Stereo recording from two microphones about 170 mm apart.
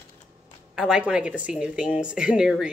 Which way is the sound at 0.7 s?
5° right (ahead or behind).